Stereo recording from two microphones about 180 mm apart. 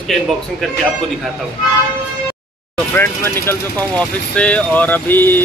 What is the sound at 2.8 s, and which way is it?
Speech, 15° left (ahead or behind).